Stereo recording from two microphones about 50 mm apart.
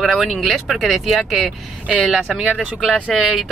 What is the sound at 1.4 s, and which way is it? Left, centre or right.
Speech, right.